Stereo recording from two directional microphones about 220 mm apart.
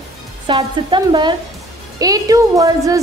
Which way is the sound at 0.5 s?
20° right (ahead or behind).